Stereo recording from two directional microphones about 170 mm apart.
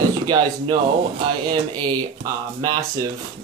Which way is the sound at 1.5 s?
25° right (ahead or behind).